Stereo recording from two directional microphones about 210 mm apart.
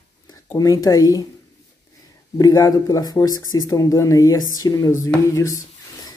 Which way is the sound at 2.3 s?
15° left (ahead or behind).